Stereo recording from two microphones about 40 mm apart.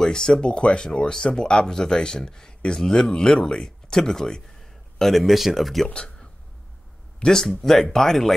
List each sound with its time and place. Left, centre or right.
0.0 s speech: centre
5.2 s speech: centre
5.9 s a sound: centre
7.2 s speech: centre